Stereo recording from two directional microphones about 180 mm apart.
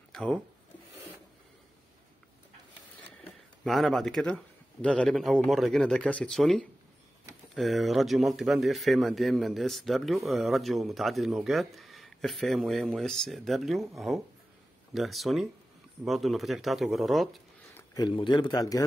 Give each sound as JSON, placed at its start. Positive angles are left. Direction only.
{"t": 0.1, "sound": "a sound", "side_deg": 5}
{"t": 3.6, "sound": "speech", "side_deg": 0}
{"t": 17.7, "sound": "speech", "side_deg": 20}